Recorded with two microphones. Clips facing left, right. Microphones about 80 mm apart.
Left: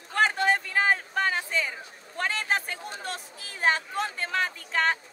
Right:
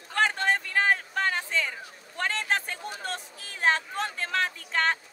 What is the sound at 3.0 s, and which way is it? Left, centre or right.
Speech, centre.